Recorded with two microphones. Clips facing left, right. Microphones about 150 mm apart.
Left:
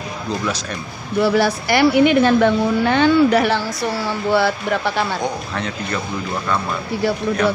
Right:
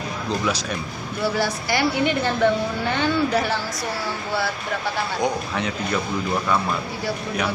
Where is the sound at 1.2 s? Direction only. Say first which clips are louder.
Left 6 dB; 75° left (ahead or behind).